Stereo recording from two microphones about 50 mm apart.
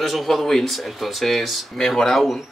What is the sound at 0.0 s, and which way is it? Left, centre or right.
Speech, centre.